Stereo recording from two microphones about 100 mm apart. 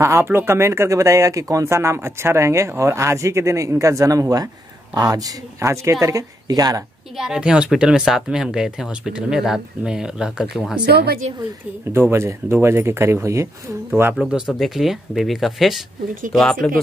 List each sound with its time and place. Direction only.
0.0 s speech: 25° right (ahead or behind)
7.2 s speech: 10° right (ahead or behind)
11.9 s speech: 25° right (ahead or behind)
14.6 s speech: 5° right (ahead or behind)